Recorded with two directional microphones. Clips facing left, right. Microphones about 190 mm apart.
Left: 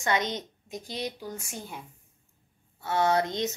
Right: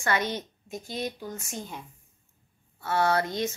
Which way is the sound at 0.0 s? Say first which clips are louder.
Even; 20° left (ahead or behind).